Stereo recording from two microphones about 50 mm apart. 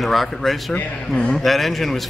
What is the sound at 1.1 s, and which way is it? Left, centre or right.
Speech, centre.